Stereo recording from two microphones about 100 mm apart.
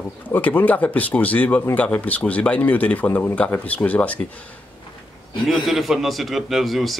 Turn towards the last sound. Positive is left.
turn(degrees=0)  # may be behind; listen again after turning